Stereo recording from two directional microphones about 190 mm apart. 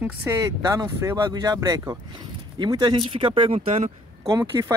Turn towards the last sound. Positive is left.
turn(degrees=-15)  # may be behind; listen again after turning